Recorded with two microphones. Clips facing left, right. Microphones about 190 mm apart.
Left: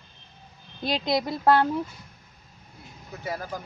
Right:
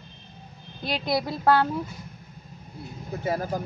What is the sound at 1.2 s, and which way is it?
Speech, 15° left (ahead or behind).